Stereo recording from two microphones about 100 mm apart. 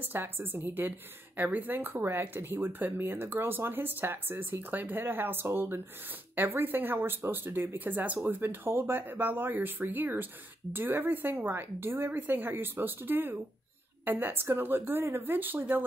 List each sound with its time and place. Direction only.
0.0 s speech: 20° right (ahead or behind)